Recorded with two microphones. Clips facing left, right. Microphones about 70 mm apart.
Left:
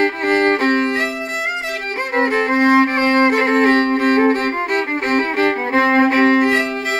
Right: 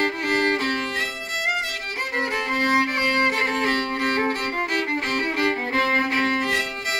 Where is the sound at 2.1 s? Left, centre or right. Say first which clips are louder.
Left 9 dB; left.